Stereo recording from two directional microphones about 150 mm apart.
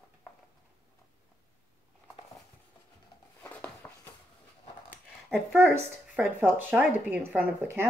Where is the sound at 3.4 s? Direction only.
10° left (ahead or behind).